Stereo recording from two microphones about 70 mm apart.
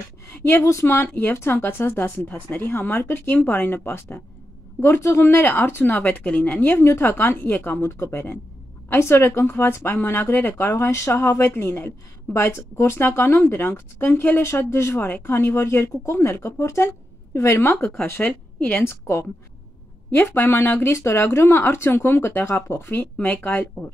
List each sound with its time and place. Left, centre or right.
0.3 s speech: left
5.3 s a woman's voice: left
7.8 s speech: left
18.0 s a woman's voice: left